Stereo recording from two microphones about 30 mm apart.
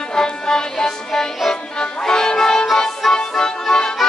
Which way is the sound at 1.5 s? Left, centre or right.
Centre.